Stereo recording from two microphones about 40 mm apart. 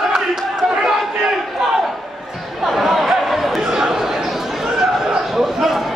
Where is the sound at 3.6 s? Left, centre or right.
Centre.